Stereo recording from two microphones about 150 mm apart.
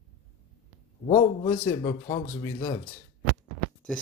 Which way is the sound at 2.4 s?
20° left (ahead or behind).